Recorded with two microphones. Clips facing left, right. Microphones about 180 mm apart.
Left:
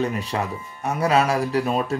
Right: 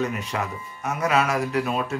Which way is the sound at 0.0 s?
35° left (ahead or behind).